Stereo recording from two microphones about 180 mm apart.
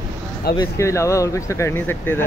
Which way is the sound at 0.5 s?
20° left (ahead or behind).